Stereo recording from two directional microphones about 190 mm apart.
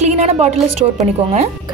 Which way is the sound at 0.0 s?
35° right (ahead or behind).